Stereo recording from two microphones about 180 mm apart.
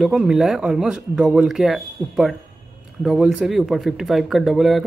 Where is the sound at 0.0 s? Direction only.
5° right (ahead or behind).